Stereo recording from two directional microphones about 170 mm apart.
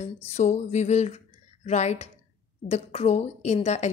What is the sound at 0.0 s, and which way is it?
Speech, 40° left (ahead or behind).